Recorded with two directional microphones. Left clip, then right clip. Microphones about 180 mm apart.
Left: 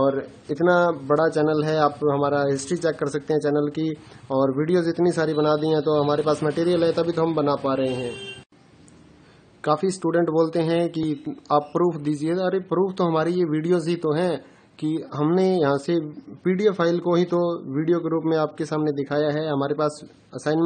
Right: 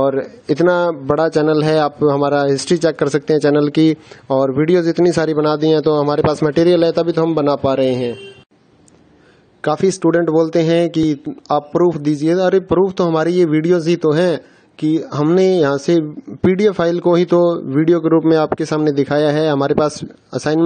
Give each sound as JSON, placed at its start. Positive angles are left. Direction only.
{"t": 0.0, "sound": "a man's voice", "side_deg": -45}
{"t": 9.6, "sound": "a man's voice", "side_deg": -35}